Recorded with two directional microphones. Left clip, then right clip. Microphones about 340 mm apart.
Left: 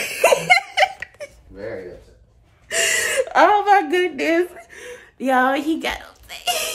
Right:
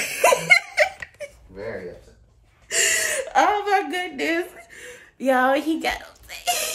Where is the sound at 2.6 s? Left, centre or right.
Centre.